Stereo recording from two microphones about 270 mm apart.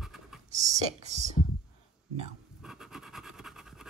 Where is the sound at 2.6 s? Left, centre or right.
Centre.